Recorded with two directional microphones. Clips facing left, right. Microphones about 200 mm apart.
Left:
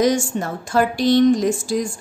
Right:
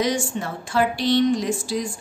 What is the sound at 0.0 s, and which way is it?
A woman's voice, 45° left (ahead or behind).